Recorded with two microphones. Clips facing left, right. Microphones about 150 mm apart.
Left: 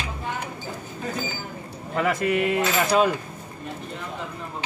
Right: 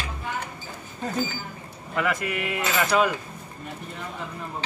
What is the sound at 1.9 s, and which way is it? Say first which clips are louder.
Coin: left 4 dB; 40° left (ahead or behind).